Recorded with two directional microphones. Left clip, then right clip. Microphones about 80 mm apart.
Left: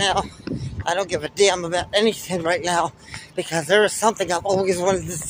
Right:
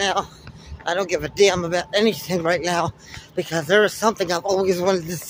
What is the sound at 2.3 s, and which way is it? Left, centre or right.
Speech, right.